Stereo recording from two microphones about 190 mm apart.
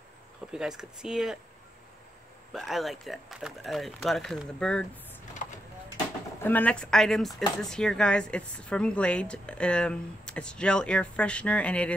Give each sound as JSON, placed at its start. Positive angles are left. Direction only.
{"t": 0.5, "sound": "speech", "side_deg": -5}
{"t": 2.5, "sound": "speech", "side_deg": 0}
{"t": 5.4, "sound": "vehicle", "side_deg": 45}
{"t": 6.4, "sound": "speech", "side_deg": 10}